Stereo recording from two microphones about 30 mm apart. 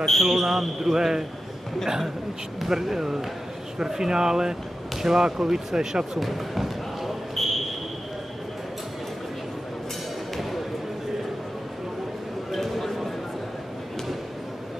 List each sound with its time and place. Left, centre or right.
0.0 s a man's voice: centre
2.6 s a man's voice: centre
6.1 s basketball bounce: centre
12.4 s a sound: centre